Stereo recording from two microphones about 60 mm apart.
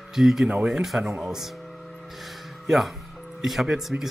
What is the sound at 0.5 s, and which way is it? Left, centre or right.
Speech, centre.